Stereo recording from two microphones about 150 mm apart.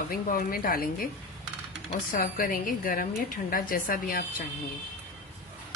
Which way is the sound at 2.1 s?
70° left (ahead or behind).